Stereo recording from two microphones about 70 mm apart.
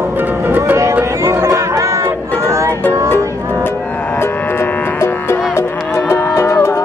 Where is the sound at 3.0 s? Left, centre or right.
Left.